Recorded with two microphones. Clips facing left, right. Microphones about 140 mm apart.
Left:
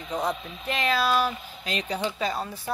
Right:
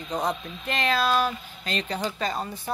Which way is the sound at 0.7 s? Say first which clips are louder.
Even; 5° left (ahead or behind).